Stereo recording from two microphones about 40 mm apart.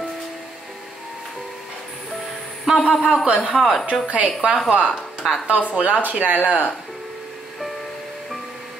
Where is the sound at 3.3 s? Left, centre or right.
Right.